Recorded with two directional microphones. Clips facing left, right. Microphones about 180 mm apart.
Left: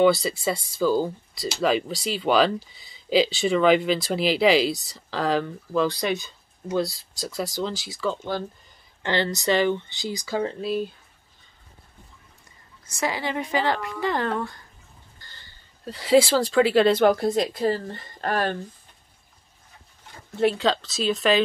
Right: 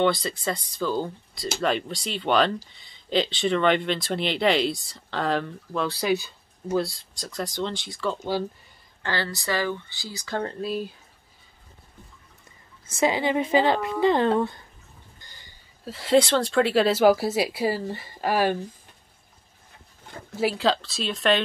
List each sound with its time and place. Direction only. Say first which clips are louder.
0.0 s speech: left 4 dB; 5° left (ahead or behind)
9.0 s speech: left 5 dB; 20° left (ahead or behind); by 10.9 s centre (ahead or behind)
13.0 s a woman's voice: right 5 dB; 20° right (ahead or behind)
15.1 s a sound: even; 15° right (ahead or behind)
15.8 s speech: left 2 dB; centre (ahead or behind)
20.3 s speech: left 2 dB; 5° right (ahead or behind)